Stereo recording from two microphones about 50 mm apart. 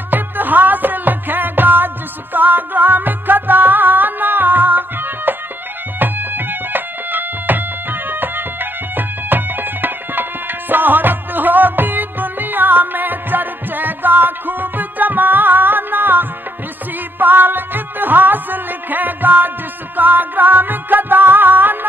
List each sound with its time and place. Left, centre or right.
0.1 s music: right